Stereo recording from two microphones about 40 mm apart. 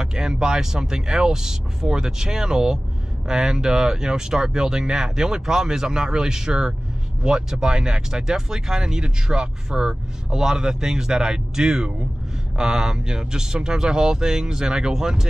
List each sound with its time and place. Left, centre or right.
0.0 s speech: centre